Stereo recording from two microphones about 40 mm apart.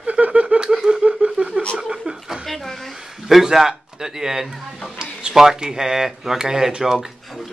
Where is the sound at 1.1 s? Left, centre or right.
Right.